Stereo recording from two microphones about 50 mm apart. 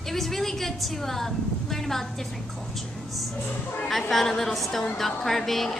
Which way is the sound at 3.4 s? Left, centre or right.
Left.